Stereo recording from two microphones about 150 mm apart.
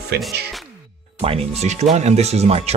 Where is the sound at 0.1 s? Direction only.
90° right.